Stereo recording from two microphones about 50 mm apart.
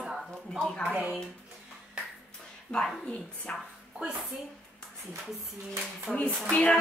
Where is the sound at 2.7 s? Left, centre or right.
Left.